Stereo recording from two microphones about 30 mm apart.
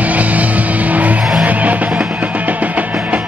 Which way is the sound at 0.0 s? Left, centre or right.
Right.